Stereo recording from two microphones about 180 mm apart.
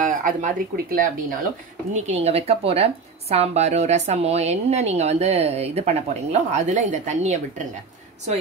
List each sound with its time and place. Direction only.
0.0 s speech: 45° right (ahead or behind)
2.0 s speech: 35° right (ahead or behind)